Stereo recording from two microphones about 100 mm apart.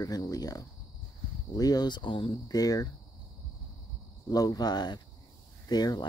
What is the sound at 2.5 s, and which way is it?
Speech, 35° left (ahead or behind).